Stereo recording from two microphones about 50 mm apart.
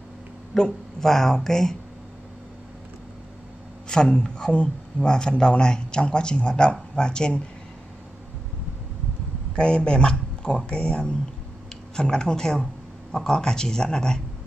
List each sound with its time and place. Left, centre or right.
0.6 s a man's voice: centre
3.9 s a man's voice: centre
9.6 s a man's voice: centre